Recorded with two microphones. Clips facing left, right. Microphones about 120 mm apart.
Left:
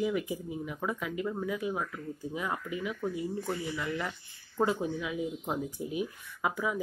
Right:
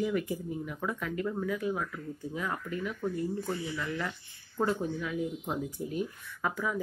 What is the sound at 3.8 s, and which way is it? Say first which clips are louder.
Speech: even; 5° left (ahead or behind).